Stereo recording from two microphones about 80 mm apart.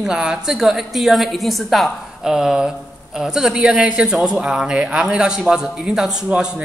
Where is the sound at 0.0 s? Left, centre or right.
Centre.